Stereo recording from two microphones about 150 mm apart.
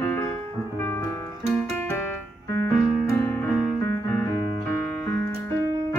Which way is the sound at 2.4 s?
20° left (ahead or behind).